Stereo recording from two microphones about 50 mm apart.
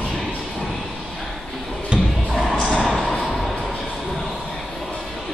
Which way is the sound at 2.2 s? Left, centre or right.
Centre.